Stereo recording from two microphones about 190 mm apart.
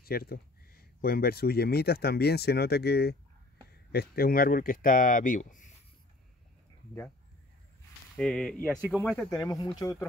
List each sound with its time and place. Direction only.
0.0 s speech: 50° left (ahead or behind)
8.2 s speech: centre (ahead or behind)
9.8 s speech: 15° left (ahead or behind)